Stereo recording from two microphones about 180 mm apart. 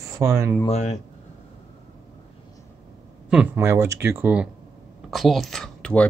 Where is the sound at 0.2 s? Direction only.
15° right (ahead or behind).